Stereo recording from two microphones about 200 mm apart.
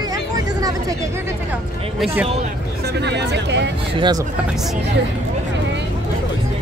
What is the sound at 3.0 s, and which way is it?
Speech, 60° right (ahead or behind).